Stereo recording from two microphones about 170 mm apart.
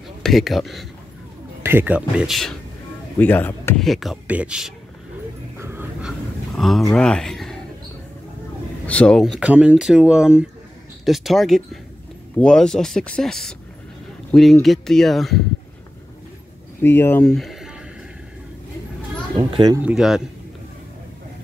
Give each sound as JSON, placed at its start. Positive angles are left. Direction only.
{"t": 0.2, "sound": "speech", "side_deg": 0}
{"t": 1.6, "sound": "speech", "side_deg": -15}
{"t": 3.2, "sound": "speech", "side_deg": 10}
{"t": 5.6, "sound": "dog", "side_deg": -10}
{"t": 6.5, "sound": "speech", "side_deg": 0}
{"t": 8.8, "sound": "speech", "side_deg": 5}
{"t": 16.8, "sound": "speech", "side_deg": 15}
{"t": 19.3, "sound": "speech", "side_deg": -25}
{"t": 19.8, "sound": "speech", "side_deg": -5}